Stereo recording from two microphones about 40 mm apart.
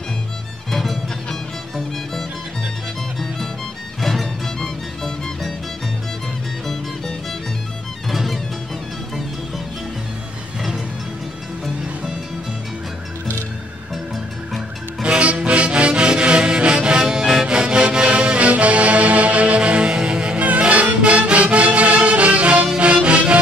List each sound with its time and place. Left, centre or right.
0.7 s music: centre
4.0 s music: centre
8.1 s music: centre
15.1 s music: right
20.3 s music: right